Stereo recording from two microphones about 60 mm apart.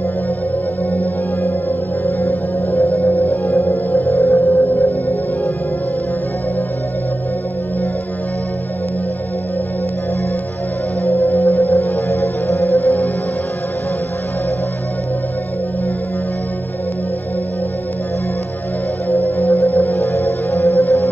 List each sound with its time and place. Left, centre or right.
2.0 s music: left
11.1 s music: left
19.3 s music: left